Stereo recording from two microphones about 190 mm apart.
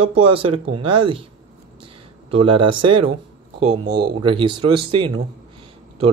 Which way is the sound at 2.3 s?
30° right (ahead or behind).